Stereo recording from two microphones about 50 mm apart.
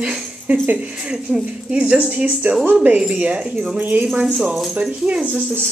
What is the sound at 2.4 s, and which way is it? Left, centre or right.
Speech, right.